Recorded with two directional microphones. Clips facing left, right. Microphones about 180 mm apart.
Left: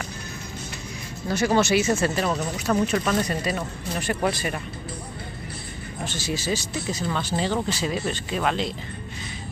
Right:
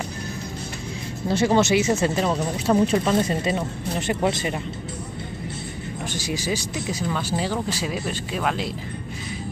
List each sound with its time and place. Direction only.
1.3 s speech: 25° right (ahead or behind)
2.9 s speech: 25° right (ahead or behind)
6.0 s speech: 15° right (ahead or behind)